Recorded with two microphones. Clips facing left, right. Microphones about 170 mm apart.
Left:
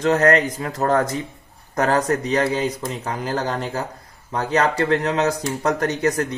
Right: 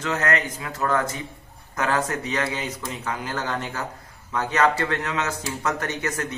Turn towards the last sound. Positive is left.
turn(degrees=40)  # may be behind; listen again after turning